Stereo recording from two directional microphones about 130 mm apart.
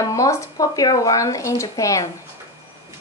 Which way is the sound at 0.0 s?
25° left (ahead or behind).